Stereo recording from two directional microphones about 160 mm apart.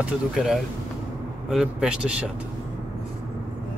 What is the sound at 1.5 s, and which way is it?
Speech, 5° right (ahead or behind).